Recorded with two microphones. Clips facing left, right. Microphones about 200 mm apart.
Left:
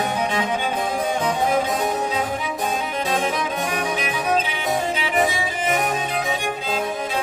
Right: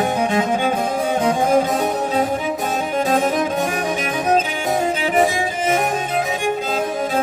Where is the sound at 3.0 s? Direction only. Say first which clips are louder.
Right 7 dB; 45° right (ahead or behind).